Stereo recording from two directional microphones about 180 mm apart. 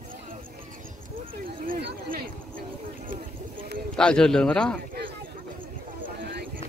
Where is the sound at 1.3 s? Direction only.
60° right (ahead or behind).